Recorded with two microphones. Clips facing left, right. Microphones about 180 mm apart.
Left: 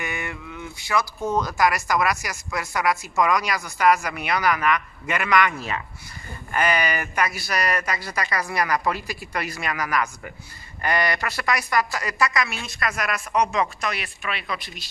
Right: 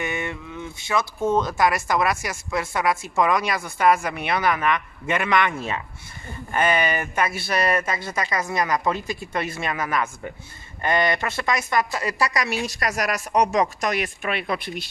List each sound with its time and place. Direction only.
0.0 s speech: 25° right (ahead or behind); by 14.9 s 55° right (ahead or behind)